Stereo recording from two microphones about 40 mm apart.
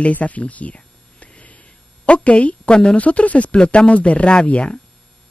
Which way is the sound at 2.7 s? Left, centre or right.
Left.